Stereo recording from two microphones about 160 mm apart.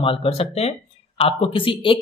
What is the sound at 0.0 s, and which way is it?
Speech, 35° left (ahead or behind).